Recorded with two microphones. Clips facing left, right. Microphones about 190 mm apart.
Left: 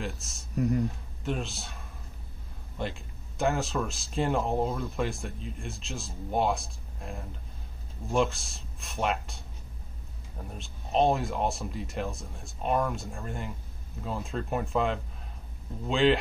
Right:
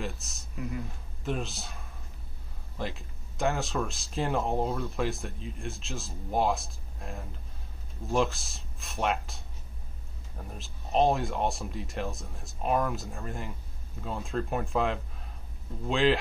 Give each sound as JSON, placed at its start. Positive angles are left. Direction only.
{"t": 0.0, "sound": "speech", "side_deg": 0}
{"t": 0.6, "sound": "speech", "side_deg": 40}
{"t": 1.2, "sound": "speech", "side_deg": 0}
{"t": 10.5, "sound": "speech", "side_deg": 0}